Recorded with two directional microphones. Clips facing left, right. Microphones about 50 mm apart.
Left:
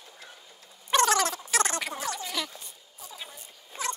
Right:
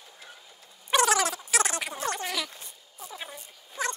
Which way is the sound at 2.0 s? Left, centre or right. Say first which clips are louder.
Right 2 dB; right.